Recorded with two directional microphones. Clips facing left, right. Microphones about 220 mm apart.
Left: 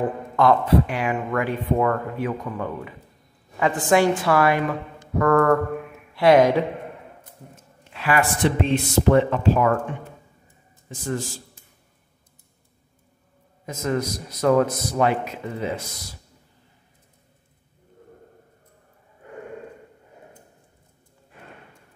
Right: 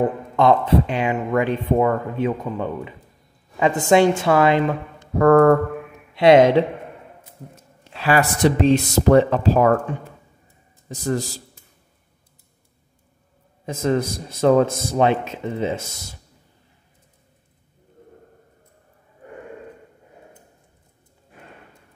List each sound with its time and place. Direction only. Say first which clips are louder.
0.4 s a man's voice: right 2 dB; 25° right (ahead or behind)
7.9 s speech: right 3 dB; 30° right (ahead or behind)
13.7 s a man's voice: right 4 dB; 30° right (ahead or behind)